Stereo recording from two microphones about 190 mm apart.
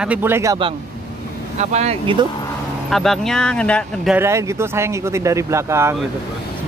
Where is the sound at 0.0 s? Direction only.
10° right (ahead or behind).